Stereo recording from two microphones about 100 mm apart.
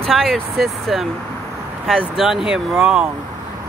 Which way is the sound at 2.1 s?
5° right (ahead or behind).